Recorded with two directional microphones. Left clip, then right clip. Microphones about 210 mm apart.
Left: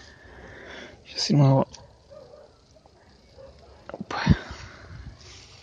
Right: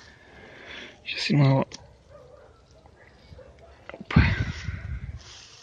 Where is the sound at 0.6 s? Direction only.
5° left (ahead or behind).